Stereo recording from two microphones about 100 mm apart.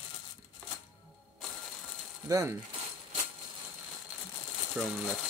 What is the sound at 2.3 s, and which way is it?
Speech, 35° right (ahead or behind).